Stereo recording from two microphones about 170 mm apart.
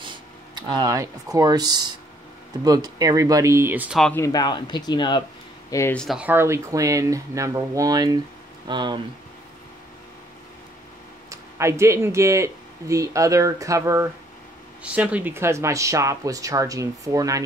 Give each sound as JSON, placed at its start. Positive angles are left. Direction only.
{"t": 0.6, "sound": "speech", "side_deg": -25}
{"t": 4.0, "sound": "speech", "side_deg": 10}
{"t": 4.3, "sound": "speech", "side_deg": 25}
{"t": 5.7, "sound": "speech", "side_deg": 15}
{"t": 5.9, "sound": "speech", "side_deg": -5}
{"t": 11.2, "sound": "speech", "side_deg": -15}